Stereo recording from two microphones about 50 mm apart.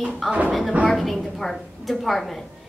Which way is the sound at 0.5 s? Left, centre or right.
Centre.